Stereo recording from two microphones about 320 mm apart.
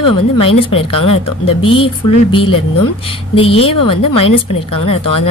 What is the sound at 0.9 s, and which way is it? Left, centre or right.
Speech, left.